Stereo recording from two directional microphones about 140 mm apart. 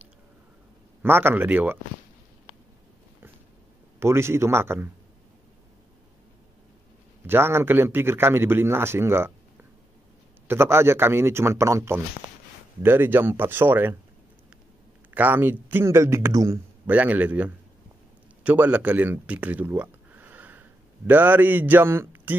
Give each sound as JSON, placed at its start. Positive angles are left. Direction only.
{"t": 1.0, "sound": "a man's voice", "side_deg": -15}
{"t": 4.0, "sound": "a man's voice", "side_deg": -20}
{"t": 7.2, "sound": "a man's voice", "side_deg": -15}
{"t": 10.5, "sound": "a man's voice", "side_deg": -15}
{"t": 15.1, "sound": "a man's voice", "side_deg": -15}